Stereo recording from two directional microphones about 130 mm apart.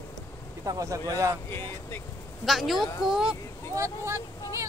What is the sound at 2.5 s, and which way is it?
Speech, centre (ahead or behind).